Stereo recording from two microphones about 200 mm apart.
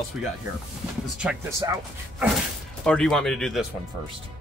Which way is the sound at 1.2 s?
5° right (ahead or behind).